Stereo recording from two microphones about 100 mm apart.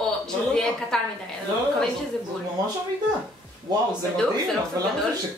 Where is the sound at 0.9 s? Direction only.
5° left (ahead or behind).